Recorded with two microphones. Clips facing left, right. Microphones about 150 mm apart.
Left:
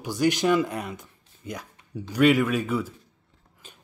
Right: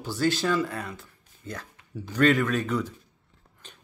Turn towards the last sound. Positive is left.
turn(degrees=5)  # may be behind; listen again after turning